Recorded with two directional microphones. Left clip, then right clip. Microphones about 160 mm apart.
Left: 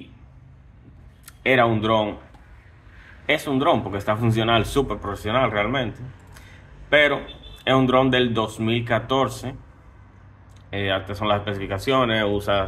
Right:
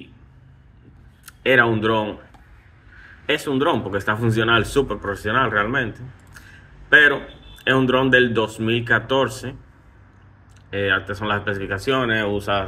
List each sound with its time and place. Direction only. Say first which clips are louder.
1.2 s speech: right 2 dB; 15° left (ahead or behind)
3.3 s a man's voice: even; 20° left (ahead or behind)
10.7 s speech: right 4 dB; 15° left (ahead or behind)